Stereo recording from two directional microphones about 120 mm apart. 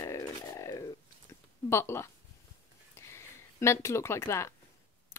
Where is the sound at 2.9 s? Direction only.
20° left (ahead or behind).